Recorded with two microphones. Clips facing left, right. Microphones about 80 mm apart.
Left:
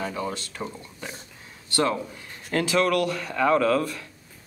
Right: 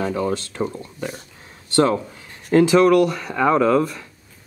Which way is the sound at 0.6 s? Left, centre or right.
Right.